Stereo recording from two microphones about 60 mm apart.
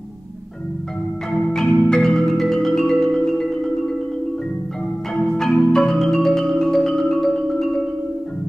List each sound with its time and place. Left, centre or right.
1.3 s music: centre
5.1 s marimba: centre